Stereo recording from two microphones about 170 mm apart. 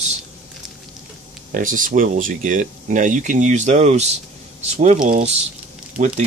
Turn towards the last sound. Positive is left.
turn(degrees=-40)  # may be behind; listen again after turning